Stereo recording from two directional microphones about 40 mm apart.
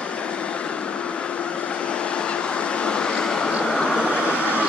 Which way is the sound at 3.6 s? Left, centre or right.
Left.